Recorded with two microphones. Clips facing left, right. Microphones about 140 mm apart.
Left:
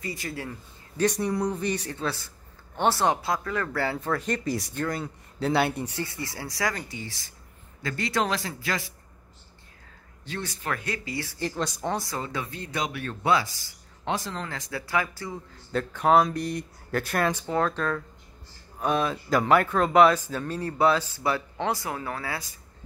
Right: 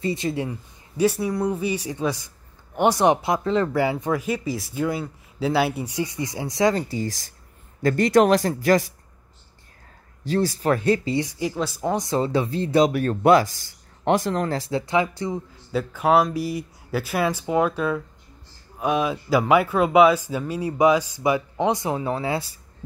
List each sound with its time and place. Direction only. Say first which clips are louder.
0.0 s speech: right 9 dB; 25° right (ahead or behind); by 8.8 s 45° right (ahead or behind)
10.2 s speech: right 12 dB; 35° right (ahead or behind)
11.2 s speech: right 4 dB; 10° right (ahead or behind)
12.0 s speech: right 10 dB; 25° right (ahead or behind); by 14.5 s 55° right (ahead or behind)
14.5 s speech: right 7 dB; 30° right (ahead or behind)
15.7 s speech: right 2 dB; 5° right (ahead or behind); by 22.5 s 25° right (ahead or behind)